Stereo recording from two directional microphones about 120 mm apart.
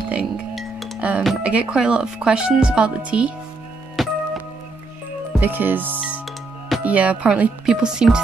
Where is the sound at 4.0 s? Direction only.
Centre (ahead or behind).